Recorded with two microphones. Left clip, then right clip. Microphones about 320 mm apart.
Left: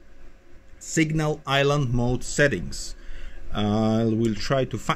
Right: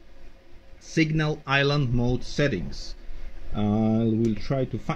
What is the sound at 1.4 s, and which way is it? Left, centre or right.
Speech, centre.